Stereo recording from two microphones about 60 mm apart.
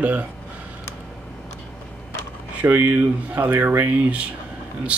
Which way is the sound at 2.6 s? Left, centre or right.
Right.